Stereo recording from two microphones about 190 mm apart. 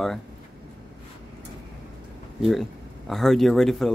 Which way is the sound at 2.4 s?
Centre (ahead or behind).